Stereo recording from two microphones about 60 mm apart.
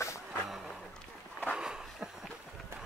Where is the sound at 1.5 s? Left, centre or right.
Centre.